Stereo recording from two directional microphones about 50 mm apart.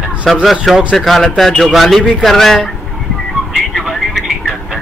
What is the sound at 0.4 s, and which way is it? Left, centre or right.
Speech, centre.